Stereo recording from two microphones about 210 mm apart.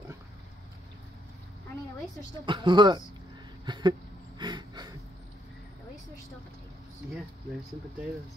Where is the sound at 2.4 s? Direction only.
20° right (ahead or behind).